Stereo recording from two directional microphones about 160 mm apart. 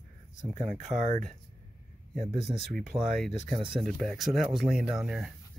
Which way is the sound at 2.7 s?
Centre (ahead or behind).